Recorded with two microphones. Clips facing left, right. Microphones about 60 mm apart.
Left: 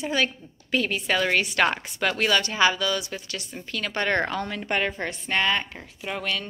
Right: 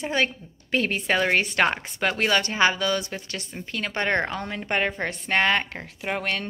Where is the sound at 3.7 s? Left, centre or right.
Right.